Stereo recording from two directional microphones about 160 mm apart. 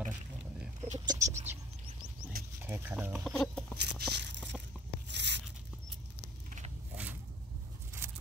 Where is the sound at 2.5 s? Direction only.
15° right (ahead or behind); by 3.6 s centre (ahead or behind).